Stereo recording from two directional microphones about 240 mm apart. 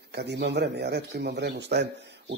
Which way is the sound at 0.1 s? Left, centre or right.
Right.